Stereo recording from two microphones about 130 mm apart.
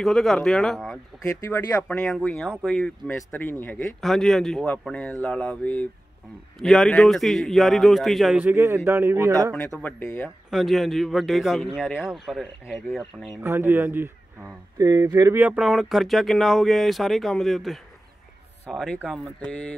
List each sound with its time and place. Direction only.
0.0 s speech: centre (ahead or behind)
8.5 s speech: 20° right (ahead or behind)
9.8 s speech: 15° left (ahead or behind)
10.5 s speech: centre (ahead or behind)
13.4 s speech: 20° right (ahead or behind)
14.9 s speech: 30° right (ahead or behind)
15.4 s speech: 5° right (ahead or behind)